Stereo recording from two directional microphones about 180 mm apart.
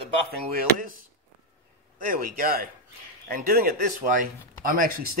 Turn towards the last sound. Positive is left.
turn(degrees=-50)  # may be behind; listen again after turning